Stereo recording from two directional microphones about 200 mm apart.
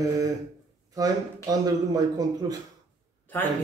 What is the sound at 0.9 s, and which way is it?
A man's voice, 20° right (ahead or behind).